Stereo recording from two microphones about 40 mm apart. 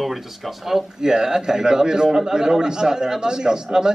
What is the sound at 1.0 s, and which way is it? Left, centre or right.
A man's voice, centre.